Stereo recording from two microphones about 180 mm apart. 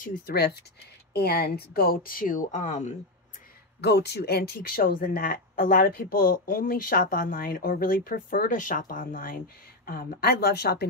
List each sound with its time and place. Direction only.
0.0 s speech: 55° left (ahead or behind)
3.8 s speech: 65° left (ahead or behind)